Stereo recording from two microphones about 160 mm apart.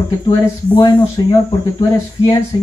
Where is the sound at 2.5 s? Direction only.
30° left (ahead or behind).